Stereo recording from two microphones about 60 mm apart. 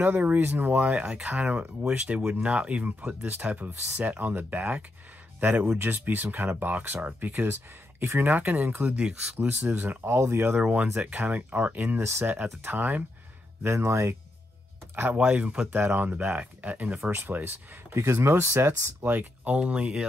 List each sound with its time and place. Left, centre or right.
0.0 s speech: right
8.8 s speech: centre
9.7 s speech: right
10.0 s speech: right
11.0 s speech: right
13.6 s speech: right
15.1 s speech: centre
15.7 s speech: right
16.1 s speech: right
17.9 s speech: right
18.7 s speech: right
19.0 s speech: right